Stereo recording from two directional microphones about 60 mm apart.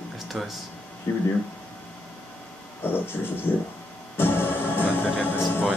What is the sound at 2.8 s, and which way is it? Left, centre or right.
Vehicle, left.